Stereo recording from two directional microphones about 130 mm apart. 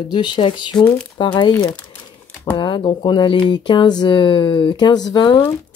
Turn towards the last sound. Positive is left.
turn(degrees=35)  # may be behind; listen again after turning